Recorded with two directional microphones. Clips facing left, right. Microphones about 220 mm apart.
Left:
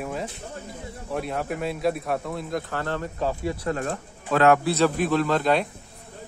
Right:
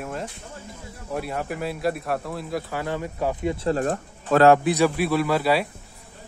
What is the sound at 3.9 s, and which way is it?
Speech, 40° right (ahead or behind).